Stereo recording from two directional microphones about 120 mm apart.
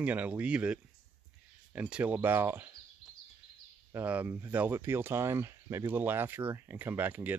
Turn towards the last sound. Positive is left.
turn(degrees=-15)  # may be behind; listen again after turning